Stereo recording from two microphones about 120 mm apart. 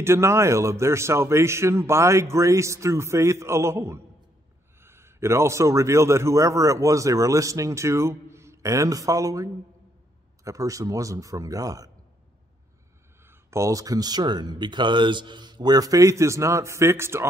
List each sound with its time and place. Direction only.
0.0 s a man's voice: 20° right (ahead or behind)
13.2 s speech: 20° right (ahead or behind)